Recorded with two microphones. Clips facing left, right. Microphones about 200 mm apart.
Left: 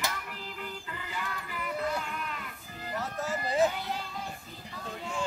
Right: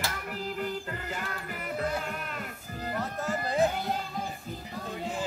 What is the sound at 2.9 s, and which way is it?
Music, centre (ahead or behind).